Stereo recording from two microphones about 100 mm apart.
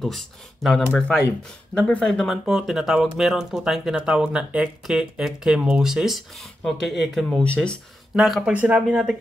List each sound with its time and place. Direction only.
0.0 s speech: 5° left (ahead or behind)
8.2 s speech: centre (ahead or behind)
8.5 s speech: 15° right (ahead or behind)